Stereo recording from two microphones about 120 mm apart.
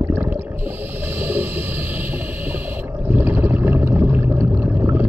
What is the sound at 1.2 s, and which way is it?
Whale vocalization, 15° right (ahead or behind).